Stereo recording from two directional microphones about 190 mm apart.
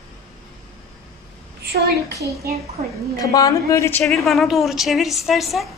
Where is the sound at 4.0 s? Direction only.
Centre (ahead or behind).